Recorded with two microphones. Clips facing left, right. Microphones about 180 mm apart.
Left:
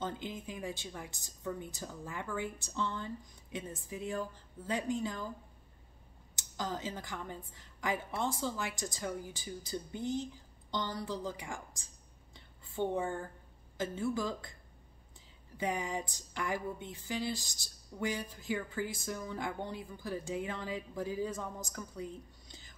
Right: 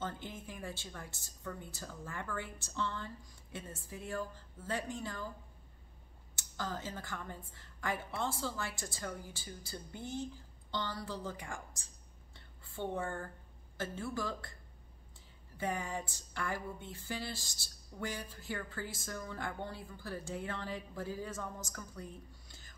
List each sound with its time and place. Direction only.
0.0 s speech: 15° left (ahead or behind)
6.3 s speech: 15° left (ahead or behind)
12.4 s a sound: 15° left (ahead or behind)
13.7 s speech: 15° left (ahead or behind)
15.5 s speech: 15° left (ahead or behind)